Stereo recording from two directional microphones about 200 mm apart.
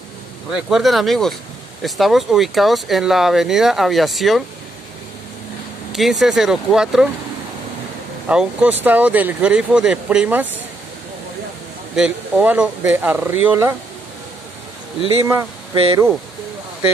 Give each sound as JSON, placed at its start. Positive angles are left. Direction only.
{"t": 0.5, "sound": "speech", "side_deg": -5}
{"t": 5.9, "sound": "speech", "side_deg": 0}
{"t": 8.3, "sound": "speech", "side_deg": -5}
{"t": 11.9, "sound": "speech", "side_deg": -5}
{"t": 15.7, "sound": "speech", "side_deg": -25}